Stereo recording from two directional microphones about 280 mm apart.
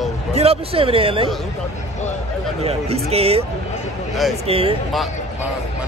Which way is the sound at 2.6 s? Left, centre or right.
Right.